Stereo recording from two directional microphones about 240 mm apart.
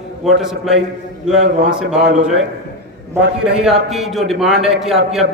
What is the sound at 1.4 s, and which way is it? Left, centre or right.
Speech, right.